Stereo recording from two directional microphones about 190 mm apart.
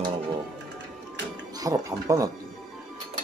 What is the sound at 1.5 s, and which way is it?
Speech, 20° right (ahead or behind).